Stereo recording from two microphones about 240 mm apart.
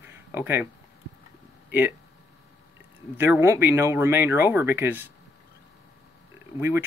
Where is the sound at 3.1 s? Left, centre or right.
Centre.